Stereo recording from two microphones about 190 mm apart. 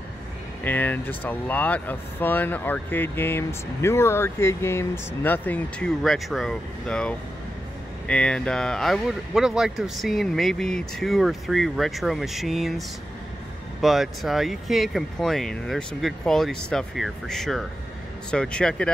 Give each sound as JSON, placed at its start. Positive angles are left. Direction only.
{"t": 0.7, "sound": "speech", "side_deg": 10}